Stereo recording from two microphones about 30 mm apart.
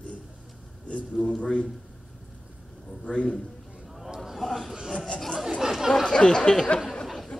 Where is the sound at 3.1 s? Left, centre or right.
Left.